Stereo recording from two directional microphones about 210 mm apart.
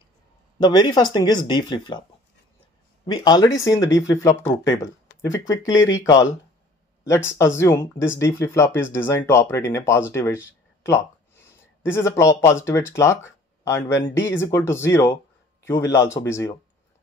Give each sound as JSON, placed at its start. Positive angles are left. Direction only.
{"t": 0.6, "sound": "speech", "side_deg": 20}
{"t": 3.1, "sound": "speech", "side_deg": 20}